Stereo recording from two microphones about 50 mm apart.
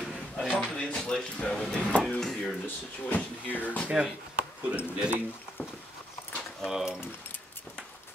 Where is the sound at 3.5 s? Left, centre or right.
Left.